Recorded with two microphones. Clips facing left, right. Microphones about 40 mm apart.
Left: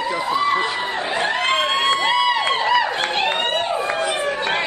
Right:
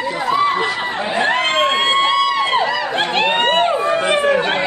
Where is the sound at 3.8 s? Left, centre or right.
Right.